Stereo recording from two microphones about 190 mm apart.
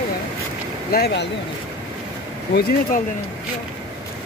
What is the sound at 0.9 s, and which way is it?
Speech, 60° left (ahead or behind).